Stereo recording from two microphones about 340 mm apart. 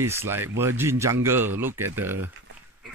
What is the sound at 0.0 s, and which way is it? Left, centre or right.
Speech, centre.